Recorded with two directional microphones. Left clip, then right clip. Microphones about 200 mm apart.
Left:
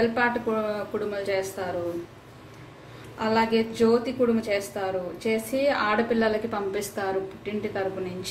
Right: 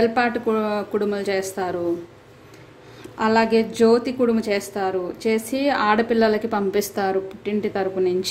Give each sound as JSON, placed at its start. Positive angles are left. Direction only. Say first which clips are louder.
{"t": 0.0, "sound": "a woman's voice", "louder": "right 4 dB", "side_deg": -55}
{"t": 3.2, "sound": "a woman's voice", "louder": "right 5 dB", "side_deg": -55}